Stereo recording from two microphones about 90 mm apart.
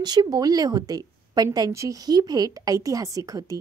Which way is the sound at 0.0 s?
50° right (ahead or behind).